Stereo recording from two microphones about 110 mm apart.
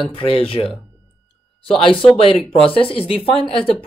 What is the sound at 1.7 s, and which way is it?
Speech, 55° left (ahead or behind).